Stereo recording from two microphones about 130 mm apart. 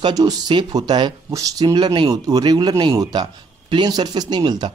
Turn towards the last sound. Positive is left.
turn(degrees=-35)  # may be behind; listen again after turning